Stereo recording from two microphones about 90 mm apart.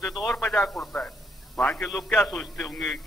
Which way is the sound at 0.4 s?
15° left (ahead or behind).